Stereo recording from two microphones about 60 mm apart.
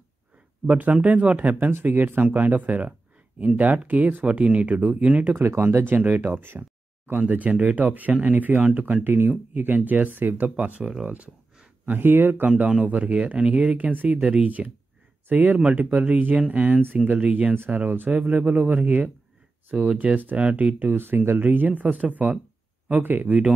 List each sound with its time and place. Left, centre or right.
0.7 s speech: right
1.7 s speech: right
5.4 s speech: right
10.5 s speech: centre
11.8 s speech: right
12.4 s speech: right